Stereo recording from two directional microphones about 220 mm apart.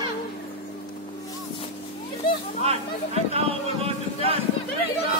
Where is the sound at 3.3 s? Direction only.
25° right (ahead or behind).